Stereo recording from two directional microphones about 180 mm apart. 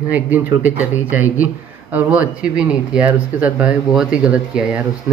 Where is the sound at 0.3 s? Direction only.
10° right (ahead or behind).